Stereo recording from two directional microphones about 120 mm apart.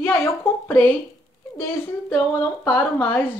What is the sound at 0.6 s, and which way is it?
Speech, 15° left (ahead or behind).